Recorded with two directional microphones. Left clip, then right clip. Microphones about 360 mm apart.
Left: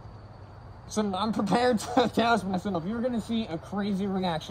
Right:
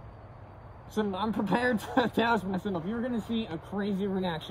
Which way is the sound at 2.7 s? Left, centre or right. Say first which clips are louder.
Left 3 dB; left.